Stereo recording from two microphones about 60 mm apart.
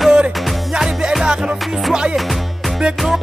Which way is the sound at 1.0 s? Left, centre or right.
Centre.